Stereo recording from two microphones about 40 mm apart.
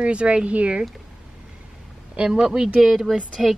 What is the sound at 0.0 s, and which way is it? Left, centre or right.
Speech, right.